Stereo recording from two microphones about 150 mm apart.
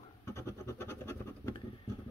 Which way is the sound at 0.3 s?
20° left (ahead or behind).